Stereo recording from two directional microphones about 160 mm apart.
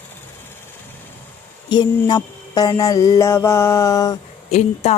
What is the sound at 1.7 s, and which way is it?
Speech, 25° left (ahead or behind).